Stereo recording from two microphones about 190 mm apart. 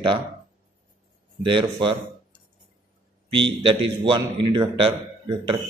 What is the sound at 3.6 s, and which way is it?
Speech, 25° right (ahead or behind).